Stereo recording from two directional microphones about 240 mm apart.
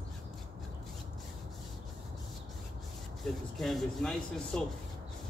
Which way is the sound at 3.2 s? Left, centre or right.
Centre.